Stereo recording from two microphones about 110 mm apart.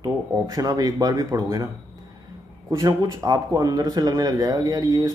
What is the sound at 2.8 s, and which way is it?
Speech, 35° right (ahead or behind).